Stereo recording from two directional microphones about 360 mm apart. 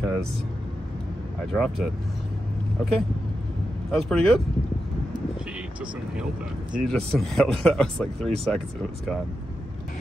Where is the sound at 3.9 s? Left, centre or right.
Centre.